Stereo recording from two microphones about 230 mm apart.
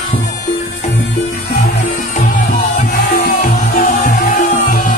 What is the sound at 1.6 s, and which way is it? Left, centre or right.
Music, left.